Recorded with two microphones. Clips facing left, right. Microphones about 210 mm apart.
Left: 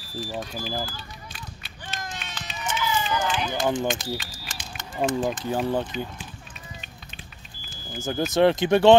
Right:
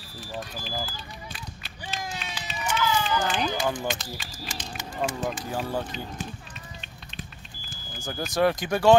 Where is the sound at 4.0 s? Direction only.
10° left (ahead or behind).